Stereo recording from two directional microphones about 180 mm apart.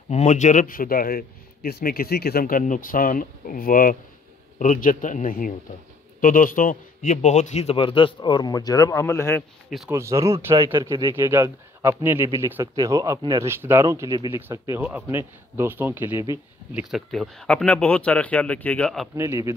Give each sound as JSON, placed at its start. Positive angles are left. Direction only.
{"t": 0.1, "sound": "a man's voice", "side_deg": 40}
{"t": 9.8, "sound": "speech", "side_deg": -15}
{"t": 16.9, "sound": "speech", "side_deg": 0}
{"t": 19.1, "sound": "speech", "side_deg": -15}